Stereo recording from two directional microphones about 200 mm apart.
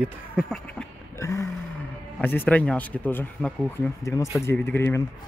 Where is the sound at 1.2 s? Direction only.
15° left (ahead or behind).